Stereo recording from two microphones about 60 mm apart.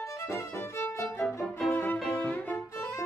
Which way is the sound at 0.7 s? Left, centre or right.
Left.